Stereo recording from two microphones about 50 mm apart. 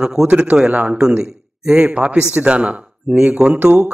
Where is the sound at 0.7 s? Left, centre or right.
Right.